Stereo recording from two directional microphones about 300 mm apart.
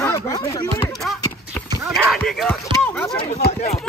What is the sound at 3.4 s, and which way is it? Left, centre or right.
Speech, left.